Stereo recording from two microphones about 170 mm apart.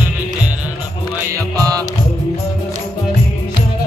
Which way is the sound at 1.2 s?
20° right (ahead or behind).